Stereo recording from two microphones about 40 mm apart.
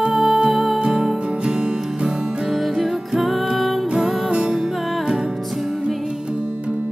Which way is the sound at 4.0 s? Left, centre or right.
Right.